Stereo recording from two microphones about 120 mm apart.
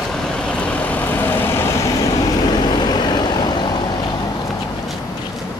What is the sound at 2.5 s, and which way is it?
Vehicle, 35° left (ahead or behind).